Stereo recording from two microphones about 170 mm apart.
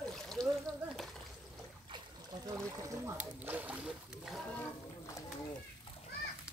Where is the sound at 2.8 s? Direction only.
15° right (ahead or behind); by 4.6 s centre (ahead or behind).